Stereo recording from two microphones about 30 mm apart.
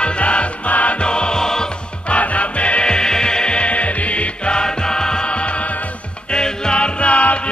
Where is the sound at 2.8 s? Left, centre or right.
Left.